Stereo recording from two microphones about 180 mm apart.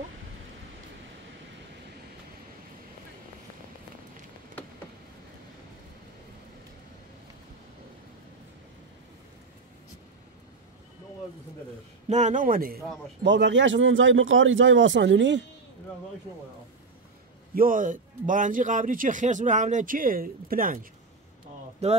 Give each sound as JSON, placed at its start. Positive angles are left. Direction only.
{"t": 12.1, "sound": "a man's voice", "side_deg": -40}
{"t": 13.2, "sound": "speech", "side_deg": -75}
{"t": 17.6, "sound": "a man's voice", "side_deg": -50}
{"t": 21.8, "sound": "a man's voice", "side_deg": -35}